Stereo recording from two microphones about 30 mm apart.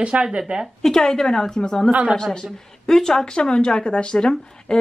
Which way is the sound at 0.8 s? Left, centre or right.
Centre.